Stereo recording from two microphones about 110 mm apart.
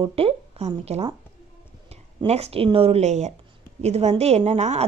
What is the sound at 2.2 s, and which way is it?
A woman's voice, 75° right (ahead or behind).